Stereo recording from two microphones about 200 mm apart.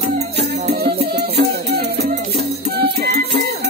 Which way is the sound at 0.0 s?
55° right (ahead or behind).